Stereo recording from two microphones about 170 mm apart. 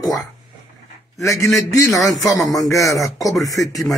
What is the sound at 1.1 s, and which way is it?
A man's voice, 15° left (ahead or behind).